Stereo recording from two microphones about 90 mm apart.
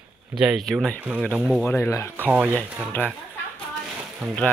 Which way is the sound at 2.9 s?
20° left (ahead or behind).